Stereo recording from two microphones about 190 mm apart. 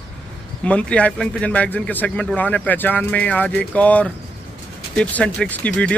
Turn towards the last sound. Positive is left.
turn(degrees=5)  # may be behind; listen again after turning